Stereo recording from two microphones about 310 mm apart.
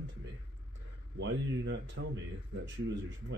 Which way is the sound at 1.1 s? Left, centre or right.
Right.